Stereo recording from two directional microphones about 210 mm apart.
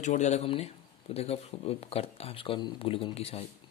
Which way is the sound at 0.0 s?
35° left (ahead or behind).